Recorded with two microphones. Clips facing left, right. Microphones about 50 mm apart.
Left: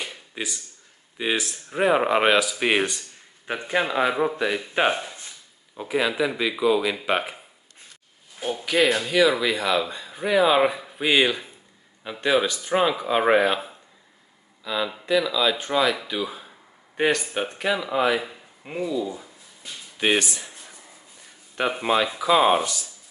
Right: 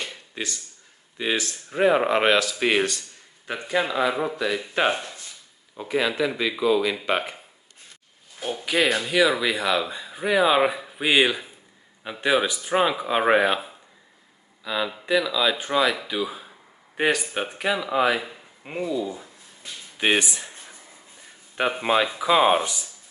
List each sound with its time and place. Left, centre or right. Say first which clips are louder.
0.0 s a sound: even; centre
1.1 s speech: even; centre; by 4.6 s left
4.7 s speech: left 1 dB; centre
8.4 s speech: left 2 dB; centre
19.1 s a sound: even; centre
20.0 s speech: even; centre
21.5 s speech: even; centre